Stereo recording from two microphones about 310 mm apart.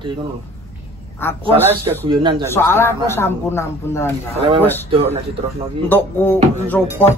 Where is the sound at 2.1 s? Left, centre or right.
Centre.